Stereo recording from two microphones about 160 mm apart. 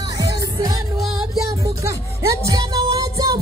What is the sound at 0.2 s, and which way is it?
Music, 25° right (ahead or behind).